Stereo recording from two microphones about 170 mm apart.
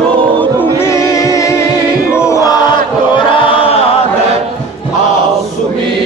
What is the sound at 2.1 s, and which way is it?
Chant, 15° left (ahead or behind).